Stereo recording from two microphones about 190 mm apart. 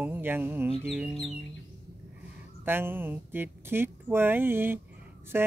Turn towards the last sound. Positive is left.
turn(degrees=-10)  # may be behind; listen again after turning